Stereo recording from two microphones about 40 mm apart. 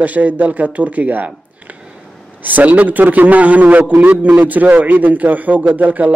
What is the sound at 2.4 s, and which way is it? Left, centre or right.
Speech, right.